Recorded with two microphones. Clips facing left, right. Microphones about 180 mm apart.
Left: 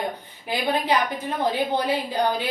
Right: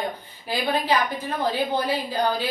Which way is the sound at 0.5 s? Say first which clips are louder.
Even; 20° left (ahead or behind).